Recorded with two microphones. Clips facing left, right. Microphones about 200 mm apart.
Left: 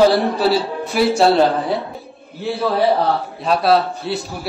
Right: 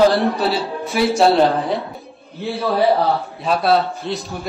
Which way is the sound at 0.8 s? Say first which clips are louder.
Even; centre (ahead or behind).